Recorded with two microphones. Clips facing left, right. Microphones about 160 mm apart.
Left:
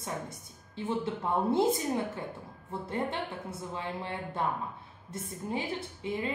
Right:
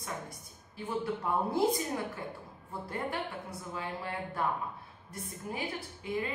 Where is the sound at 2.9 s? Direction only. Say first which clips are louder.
Left 2 dB; 25° left (ahead or behind).